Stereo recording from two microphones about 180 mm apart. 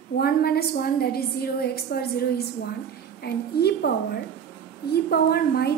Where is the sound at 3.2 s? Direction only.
60° left (ahead or behind).